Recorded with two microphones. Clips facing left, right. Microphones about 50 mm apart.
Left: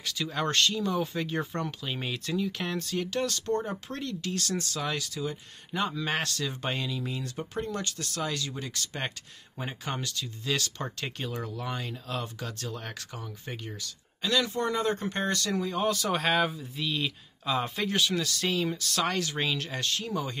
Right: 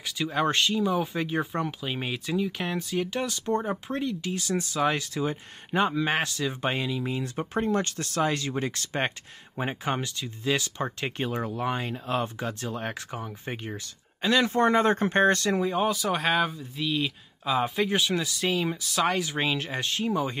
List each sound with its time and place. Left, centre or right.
0.0 s speech: centre
4.8 s speech: right
15.9 s speech: centre; by 20.3 s right